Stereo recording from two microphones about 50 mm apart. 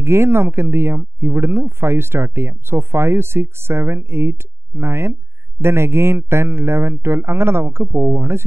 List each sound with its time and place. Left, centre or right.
0.0 s speech: right